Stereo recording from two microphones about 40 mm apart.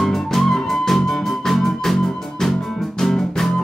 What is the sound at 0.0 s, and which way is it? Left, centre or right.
Music, centre.